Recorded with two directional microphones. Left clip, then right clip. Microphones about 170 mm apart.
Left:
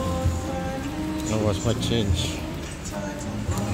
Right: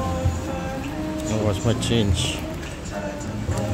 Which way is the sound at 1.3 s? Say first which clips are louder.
Right 1 dB; 5° right (ahead or behind).